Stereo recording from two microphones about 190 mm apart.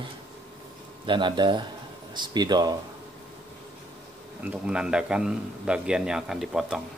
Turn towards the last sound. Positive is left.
turn(degrees=0)  # may be behind; listen again after turning